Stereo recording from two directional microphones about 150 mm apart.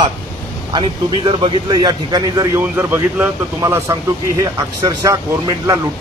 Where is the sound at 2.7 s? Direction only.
15° right (ahead or behind).